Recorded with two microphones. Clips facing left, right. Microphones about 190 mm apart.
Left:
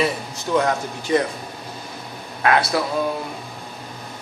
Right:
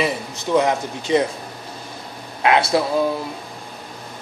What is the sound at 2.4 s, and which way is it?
Speech, 20° right (ahead or behind).